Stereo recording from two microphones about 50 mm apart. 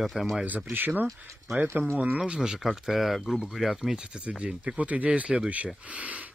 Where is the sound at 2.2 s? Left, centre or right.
Centre.